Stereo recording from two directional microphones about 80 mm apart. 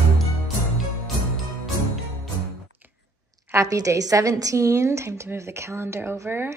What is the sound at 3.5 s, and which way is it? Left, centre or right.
Speech, right.